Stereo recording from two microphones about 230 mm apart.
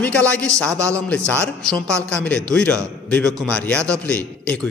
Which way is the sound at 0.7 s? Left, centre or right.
Centre.